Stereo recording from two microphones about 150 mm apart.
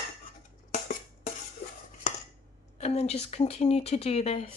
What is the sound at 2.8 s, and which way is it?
Speech, 45° left (ahead or behind).